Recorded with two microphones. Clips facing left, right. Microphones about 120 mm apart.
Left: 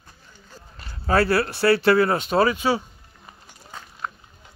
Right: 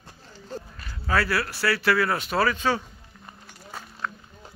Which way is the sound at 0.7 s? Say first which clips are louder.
Left 5 dB; 30° left (ahead or behind).